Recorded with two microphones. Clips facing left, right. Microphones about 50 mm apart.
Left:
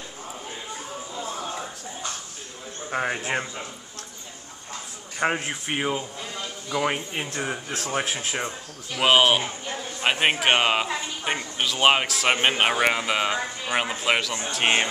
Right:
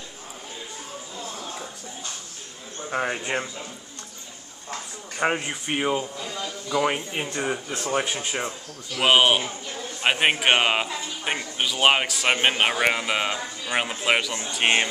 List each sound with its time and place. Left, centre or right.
1.1 s music: left
2.9 s speech: centre
5.2 s speech: centre
6.2 s a man's voice: centre
6.8 s speech: centre